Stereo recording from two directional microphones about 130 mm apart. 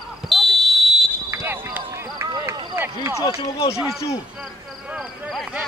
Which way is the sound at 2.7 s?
20° right (ahead or behind).